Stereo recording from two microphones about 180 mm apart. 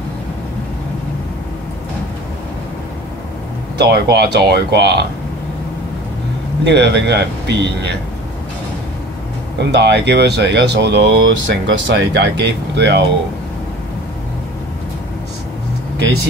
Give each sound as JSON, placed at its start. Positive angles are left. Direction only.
{"t": 3.7, "sound": "speech", "side_deg": -65}
{"t": 6.6, "sound": "speech", "side_deg": -70}
{"t": 9.6, "sound": "speech", "side_deg": -70}